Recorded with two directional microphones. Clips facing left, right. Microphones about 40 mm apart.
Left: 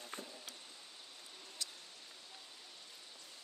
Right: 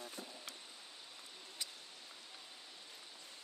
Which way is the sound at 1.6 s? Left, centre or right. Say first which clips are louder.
Left 1 dB; centre.